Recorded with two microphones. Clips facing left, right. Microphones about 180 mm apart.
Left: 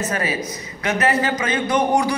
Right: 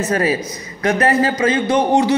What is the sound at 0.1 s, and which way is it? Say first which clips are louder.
A man's voice: right 6 dB; 35° right (ahead or behind).